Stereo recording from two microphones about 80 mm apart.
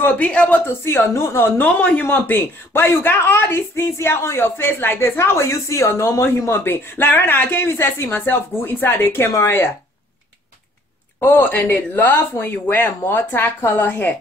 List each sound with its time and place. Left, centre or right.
0.0 s a woman's voice: centre
0.8 s speech: left
1.8 s speech: centre; by 6.2 s left
6.2 s speech: left
11.1 s speech: left